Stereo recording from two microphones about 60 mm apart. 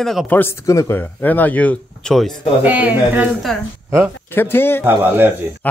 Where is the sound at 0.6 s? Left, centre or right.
Left.